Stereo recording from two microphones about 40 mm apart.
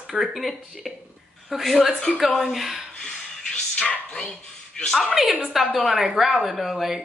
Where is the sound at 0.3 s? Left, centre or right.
Centre.